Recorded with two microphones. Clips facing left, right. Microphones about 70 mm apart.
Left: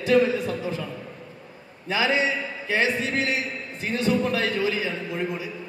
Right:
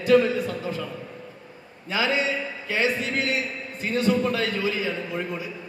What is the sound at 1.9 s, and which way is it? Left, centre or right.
Speech, left.